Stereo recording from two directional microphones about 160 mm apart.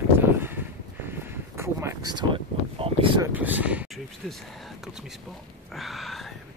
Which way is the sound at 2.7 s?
35° right (ahead or behind).